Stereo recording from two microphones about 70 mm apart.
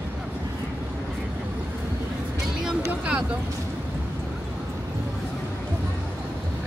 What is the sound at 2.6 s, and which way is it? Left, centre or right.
Vehicle, centre.